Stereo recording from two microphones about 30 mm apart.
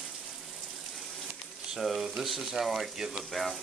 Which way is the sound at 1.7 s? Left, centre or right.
Centre.